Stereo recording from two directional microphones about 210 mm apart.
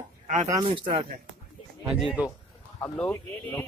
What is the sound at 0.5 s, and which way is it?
Speech, 20° right (ahead or behind).